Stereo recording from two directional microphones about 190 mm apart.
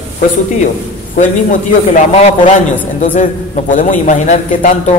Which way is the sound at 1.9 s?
40° left (ahead or behind).